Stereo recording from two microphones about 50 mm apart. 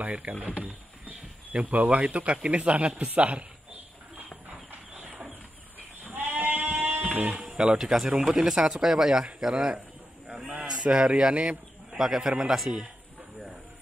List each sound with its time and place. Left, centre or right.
0.0 s a man's voice: right
4.5 s a sound: right
6.0 s sheep: right; by 7.9 s centre
8.1 s speech: centre